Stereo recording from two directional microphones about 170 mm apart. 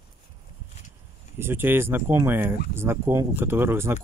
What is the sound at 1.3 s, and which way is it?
Speech, 15° right (ahead or behind).